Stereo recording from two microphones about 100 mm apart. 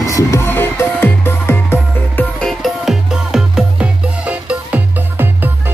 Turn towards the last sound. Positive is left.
turn(degrees=-20)  # may be behind; listen again after turning